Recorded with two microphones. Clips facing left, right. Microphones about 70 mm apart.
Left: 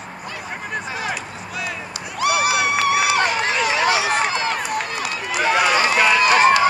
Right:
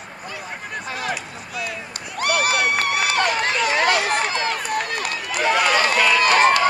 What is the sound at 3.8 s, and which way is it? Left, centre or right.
Run, right.